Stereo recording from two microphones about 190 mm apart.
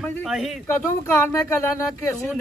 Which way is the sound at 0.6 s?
15° left (ahead or behind).